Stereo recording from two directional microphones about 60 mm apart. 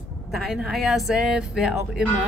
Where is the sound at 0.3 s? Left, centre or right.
Centre.